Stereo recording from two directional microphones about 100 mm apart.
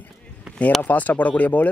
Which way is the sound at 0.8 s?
15° left (ahead or behind).